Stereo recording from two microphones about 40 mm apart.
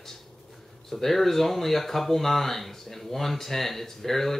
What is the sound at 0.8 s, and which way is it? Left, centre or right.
Speech, centre.